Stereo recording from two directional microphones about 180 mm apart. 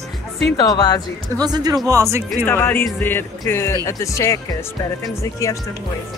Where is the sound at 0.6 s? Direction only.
25° left (ahead or behind).